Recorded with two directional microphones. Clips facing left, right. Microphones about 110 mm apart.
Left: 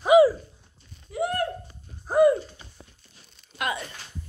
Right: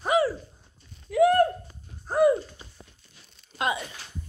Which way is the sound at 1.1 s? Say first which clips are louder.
Right 8 dB; 70° right (ahead or behind).